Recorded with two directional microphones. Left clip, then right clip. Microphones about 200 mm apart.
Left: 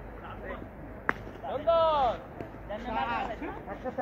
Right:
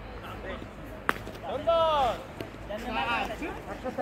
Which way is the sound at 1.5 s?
25° right (ahead or behind).